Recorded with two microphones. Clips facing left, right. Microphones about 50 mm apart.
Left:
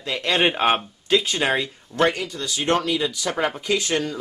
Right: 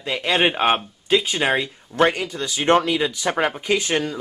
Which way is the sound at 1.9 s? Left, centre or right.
Right.